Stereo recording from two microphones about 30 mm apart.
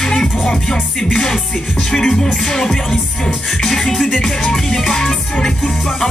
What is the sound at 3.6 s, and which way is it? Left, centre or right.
Music, centre.